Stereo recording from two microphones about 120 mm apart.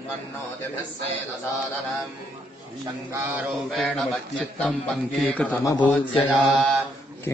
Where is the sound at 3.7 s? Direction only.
Centre (ahead or behind).